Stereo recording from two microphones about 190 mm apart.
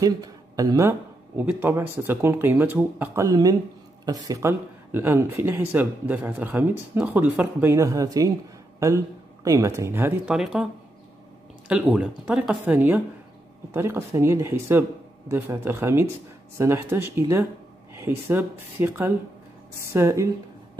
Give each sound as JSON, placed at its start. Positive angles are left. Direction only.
{"t": 0.0, "sound": "speech", "side_deg": -20}
{"t": 11.7, "sound": "speech", "side_deg": -5}